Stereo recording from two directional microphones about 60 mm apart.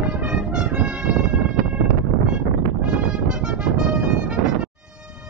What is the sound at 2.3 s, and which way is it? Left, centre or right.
Music, centre.